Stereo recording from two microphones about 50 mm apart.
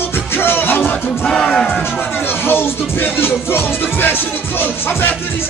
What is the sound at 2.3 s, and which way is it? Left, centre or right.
Music, left.